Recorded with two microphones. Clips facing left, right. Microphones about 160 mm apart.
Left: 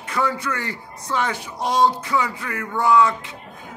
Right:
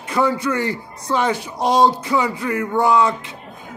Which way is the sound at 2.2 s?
15° right (ahead or behind).